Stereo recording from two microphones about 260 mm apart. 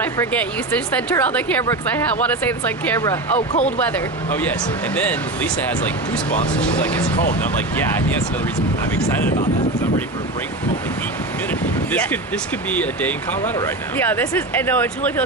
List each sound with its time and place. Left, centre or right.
0.0 s speech: centre
3.3 s speech: left
4.4 s speech: centre
12.7 s speech: centre